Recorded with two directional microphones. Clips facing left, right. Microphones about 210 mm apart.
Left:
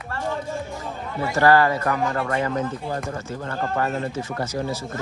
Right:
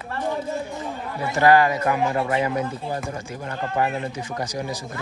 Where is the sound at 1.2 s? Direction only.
15° right (ahead or behind).